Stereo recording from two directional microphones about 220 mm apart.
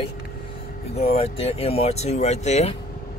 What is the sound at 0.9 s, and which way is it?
Speech, 25° left (ahead or behind).